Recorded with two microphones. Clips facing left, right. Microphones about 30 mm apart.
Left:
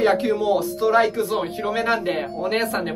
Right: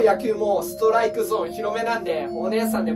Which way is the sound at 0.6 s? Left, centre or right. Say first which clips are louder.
Left 1 dB; left.